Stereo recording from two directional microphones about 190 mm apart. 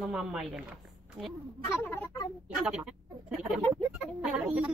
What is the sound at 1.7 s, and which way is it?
Speech, 10° left (ahead or behind).